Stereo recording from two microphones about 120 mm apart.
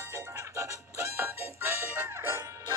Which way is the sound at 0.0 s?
20° right (ahead or behind).